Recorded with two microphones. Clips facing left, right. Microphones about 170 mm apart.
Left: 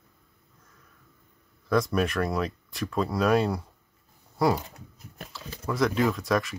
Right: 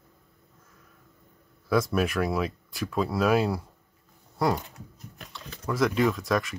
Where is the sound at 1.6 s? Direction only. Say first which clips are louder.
Even; 5° right (ahead or behind).